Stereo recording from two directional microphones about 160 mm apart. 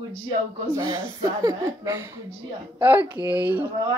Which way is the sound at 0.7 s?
20° right (ahead or behind).